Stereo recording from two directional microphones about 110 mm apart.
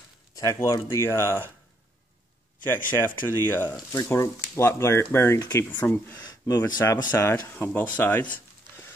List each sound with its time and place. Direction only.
0.4 s speech: 25° left (ahead or behind)
2.6 s speech: 20° left (ahead or behind)
3.9 s speech: 30° left (ahead or behind)
5.7 s speech: 20° left (ahead or behind)
6.2 s a sound: 35° left (ahead or behind)
6.8 s speech: 25° left (ahead or behind)